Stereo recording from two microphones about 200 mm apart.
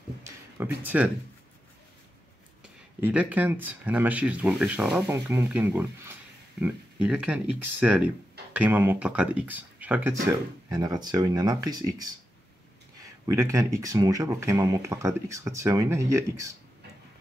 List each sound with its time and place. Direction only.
0.6 s speech: 10° right (ahead or behind)
2.6 s speech: 5° right (ahead or behind)
13.3 s speech: 15° right (ahead or behind)